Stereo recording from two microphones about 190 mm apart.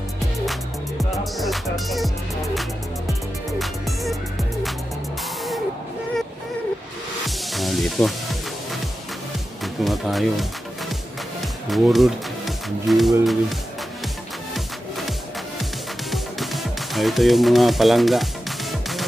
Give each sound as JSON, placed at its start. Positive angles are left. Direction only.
{"t": 0.5, "sound": "music", "side_deg": 0}
{"t": 7.2, "sound": "music", "side_deg": 0}
{"t": 9.8, "sound": "speech", "side_deg": 0}
{"t": 11.7, "sound": "speech", "side_deg": 0}
{"t": 14.5, "sound": "music", "side_deg": 0}